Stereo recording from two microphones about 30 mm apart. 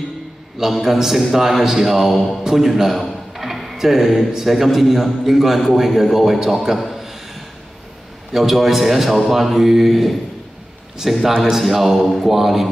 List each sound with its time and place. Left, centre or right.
0.6 s a man's voice: centre
8.3 s a man's voice: centre
11.0 s a man's voice: centre
11.6 s a man's voice: centre